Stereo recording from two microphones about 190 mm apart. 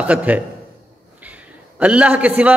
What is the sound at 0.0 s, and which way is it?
A man's voice, 5° right (ahead or behind).